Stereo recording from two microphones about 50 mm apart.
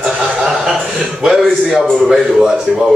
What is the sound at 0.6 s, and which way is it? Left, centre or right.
Speech, centre.